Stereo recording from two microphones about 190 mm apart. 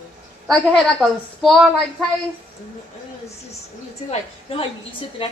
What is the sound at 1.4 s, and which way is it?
Speech, centre (ahead or behind).